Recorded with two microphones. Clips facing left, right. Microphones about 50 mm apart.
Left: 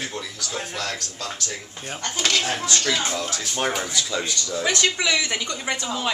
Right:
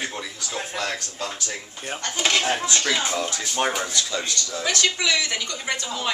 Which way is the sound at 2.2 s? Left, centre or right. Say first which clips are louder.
Right 2 dB; centre.